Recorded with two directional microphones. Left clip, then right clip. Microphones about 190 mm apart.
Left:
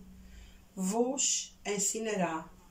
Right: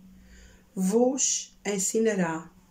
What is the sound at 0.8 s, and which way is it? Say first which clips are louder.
Speech: right 7 dB; 40° right (ahead or behind).